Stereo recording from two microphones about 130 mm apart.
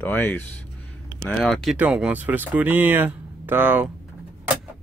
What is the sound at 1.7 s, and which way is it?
Speech, 10° right (ahead or behind).